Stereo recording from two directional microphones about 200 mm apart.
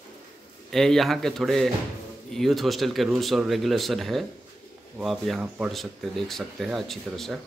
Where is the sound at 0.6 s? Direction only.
Centre (ahead or behind).